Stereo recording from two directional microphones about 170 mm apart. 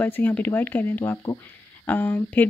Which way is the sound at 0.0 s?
10° left (ahead or behind).